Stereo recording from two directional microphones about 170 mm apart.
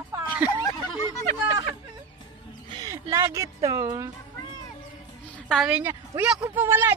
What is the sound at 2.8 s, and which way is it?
Speech, 15° right (ahead or behind).